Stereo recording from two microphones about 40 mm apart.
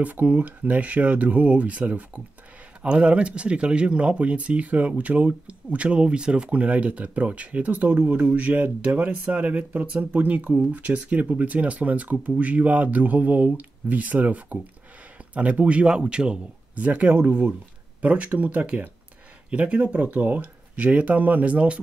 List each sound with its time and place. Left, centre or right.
0.0 s speech: right
2.8 s speech: right
16.7 s speech: right
17.2 s speech: right
18.0 s speech: right
19.8 s speech: right